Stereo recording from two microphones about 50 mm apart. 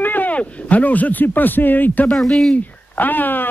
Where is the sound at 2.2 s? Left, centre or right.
Centre.